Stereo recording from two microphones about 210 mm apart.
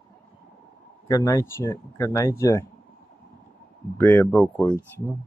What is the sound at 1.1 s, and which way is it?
Speech, 15° left (ahead or behind).